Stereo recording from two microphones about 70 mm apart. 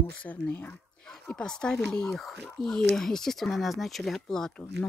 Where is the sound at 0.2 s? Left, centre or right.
Left.